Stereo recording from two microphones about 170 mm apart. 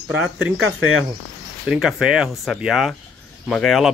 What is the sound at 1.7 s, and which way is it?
Speech, 5° right (ahead or behind).